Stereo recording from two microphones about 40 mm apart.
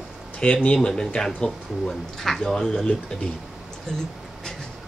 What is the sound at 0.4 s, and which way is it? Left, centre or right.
Speech, left.